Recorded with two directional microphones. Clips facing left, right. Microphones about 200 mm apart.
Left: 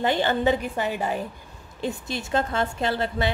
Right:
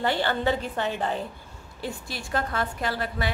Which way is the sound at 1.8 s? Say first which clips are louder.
Left 5 dB; 20° left (ahead or behind).